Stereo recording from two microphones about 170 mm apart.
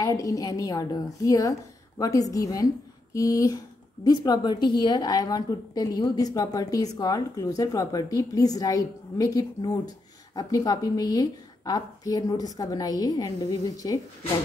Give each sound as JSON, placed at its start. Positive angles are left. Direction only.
{"t": 0.0, "sound": "a woman's voice", "side_deg": 20}